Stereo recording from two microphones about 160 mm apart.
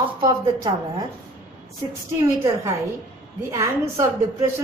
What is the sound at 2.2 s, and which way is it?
Speech, 20° right (ahead or behind).